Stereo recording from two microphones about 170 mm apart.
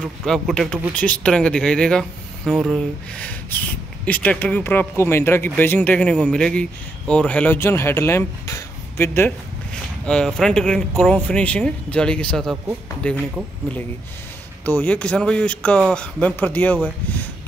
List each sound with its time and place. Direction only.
0.2 s speech: centre (ahead or behind)
14.6 s speech: 10° left (ahead or behind)